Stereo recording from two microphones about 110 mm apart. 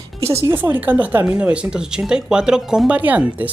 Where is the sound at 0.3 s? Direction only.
25° right (ahead or behind).